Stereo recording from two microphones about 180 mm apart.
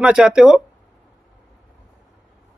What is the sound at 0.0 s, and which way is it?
Speech, 5° right (ahead or behind).